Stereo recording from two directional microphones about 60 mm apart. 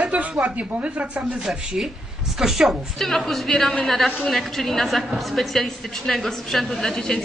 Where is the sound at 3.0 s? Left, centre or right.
Centre.